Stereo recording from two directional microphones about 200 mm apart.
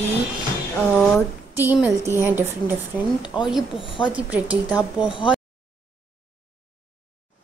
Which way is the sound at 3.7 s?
25° left (ahead or behind).